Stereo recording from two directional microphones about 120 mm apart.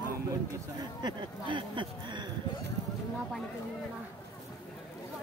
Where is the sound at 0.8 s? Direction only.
40° right (ahead or behind).